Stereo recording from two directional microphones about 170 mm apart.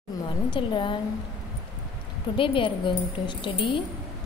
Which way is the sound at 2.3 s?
30° left (ahead or behind).